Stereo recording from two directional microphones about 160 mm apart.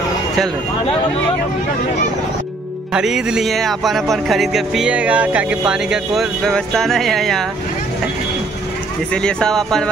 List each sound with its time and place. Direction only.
2.9 s speech: 5° right (ahead or behind)
9.1 s speech: 5° left (ahead or behind)